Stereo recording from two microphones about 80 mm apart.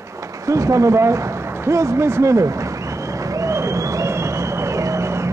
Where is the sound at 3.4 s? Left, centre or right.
Right.